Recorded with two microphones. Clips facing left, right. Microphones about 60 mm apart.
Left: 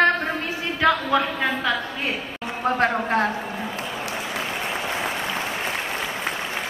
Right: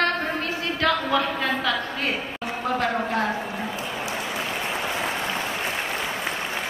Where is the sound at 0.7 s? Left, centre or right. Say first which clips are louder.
Left 3 dB; centre.